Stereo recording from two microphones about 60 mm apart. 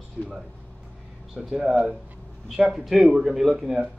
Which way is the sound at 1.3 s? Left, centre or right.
Centre.